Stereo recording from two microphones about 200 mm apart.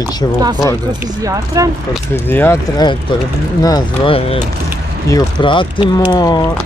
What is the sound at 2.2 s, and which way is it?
Speech, 10° left (ahead or behind).